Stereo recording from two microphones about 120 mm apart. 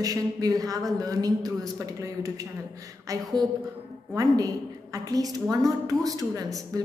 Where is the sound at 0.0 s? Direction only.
30° right (ahead or behind).